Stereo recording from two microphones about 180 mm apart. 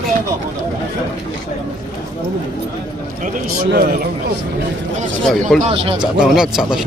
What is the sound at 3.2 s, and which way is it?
Speech, 55° right (ahead or behind).